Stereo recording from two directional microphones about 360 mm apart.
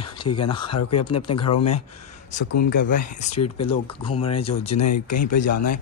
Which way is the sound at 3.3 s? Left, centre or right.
Left.